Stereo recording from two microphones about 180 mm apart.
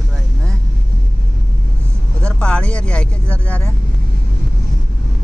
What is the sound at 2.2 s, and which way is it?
Vehicle, 5° left (ahead or behind).